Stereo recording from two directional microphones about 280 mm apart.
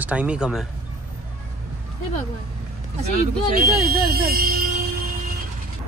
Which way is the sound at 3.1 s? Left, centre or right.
Right.